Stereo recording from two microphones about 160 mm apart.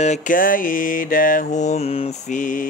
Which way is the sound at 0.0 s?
50° left (ahead or behind).